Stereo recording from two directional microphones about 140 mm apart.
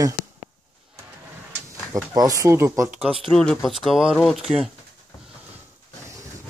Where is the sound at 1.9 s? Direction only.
25° right (ahead or behind).